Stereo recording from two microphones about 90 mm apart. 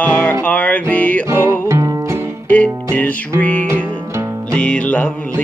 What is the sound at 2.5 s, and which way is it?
Music, 15° left (ahead or behind).